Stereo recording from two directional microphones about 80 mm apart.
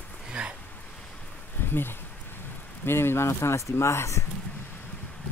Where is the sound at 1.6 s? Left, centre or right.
Left.